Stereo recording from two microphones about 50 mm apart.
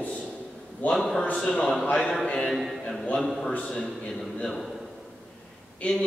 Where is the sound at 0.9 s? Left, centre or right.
Centre.